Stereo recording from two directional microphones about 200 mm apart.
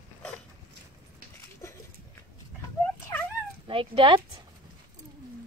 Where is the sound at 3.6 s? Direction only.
25° right (ahead or behind).